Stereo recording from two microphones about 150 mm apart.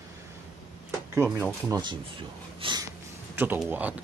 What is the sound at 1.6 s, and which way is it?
Speech, 30° right (ahead or behind).